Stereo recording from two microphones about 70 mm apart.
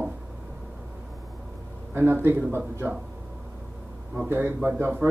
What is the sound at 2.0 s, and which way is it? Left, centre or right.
Speech, right.